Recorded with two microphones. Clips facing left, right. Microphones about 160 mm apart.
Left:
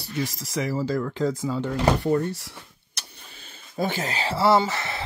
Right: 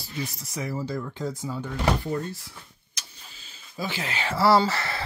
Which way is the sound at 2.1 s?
70° left (ahead or behind).